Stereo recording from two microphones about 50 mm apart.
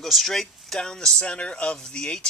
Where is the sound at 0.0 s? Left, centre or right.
Centre.